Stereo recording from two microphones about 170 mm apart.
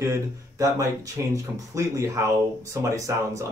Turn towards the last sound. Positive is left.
turn(degrees=-15)  # may be behind; listen again after turning